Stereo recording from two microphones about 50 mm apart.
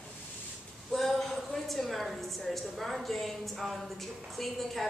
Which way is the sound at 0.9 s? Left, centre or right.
Centre.